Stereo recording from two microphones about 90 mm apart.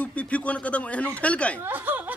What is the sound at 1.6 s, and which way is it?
Speech, 20° right (ahead or behind).